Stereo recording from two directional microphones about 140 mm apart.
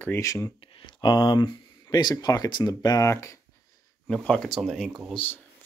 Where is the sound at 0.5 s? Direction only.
40° left (ahead or behind); by 3.3 s 20° left (ahead or behind).